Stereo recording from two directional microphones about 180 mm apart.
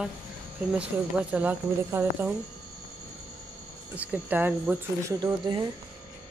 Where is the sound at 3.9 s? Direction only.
10° right (ahead or behind).